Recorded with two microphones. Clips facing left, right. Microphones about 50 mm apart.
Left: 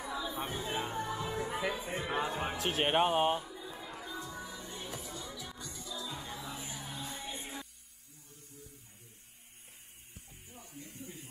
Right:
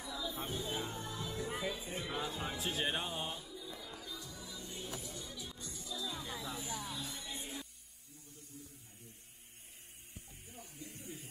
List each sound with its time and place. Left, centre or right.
0.0 s music: left
1.6 s music: left
2.0 s music: left
2.5 s music: left
5.3 s music: left
5.9 s music: left
10.9 s a sound: centre